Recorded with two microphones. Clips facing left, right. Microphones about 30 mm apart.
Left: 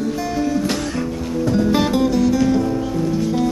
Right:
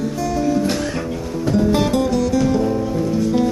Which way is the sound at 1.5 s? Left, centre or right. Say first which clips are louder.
Right 1 dB; centre.